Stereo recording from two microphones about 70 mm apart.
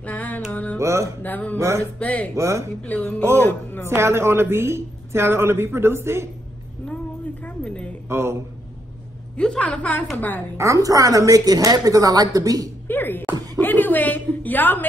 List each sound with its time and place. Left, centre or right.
0.0 s music: left
0.7 s music: right
1.2 s speech: left
2.3 s music: right
2.8 s speech: left
3.9 s speech: right
7.4 s a sound: centre
8.1 s speech: right
9.4 s a woman's voice: centre
10.6 s a woman's voice: right
12.8 s music: left
13.6 s a sound: left